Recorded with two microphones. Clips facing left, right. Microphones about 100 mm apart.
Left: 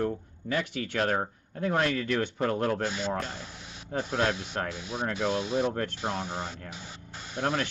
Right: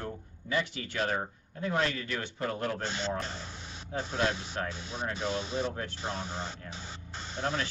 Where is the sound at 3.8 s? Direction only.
60° left (ahead or behind).